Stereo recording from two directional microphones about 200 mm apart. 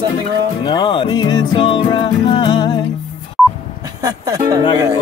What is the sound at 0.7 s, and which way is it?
Music, 25° left (ahead or behind).